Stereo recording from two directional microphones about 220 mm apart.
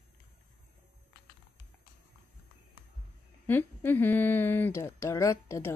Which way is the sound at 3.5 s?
10° left (ahead or behind).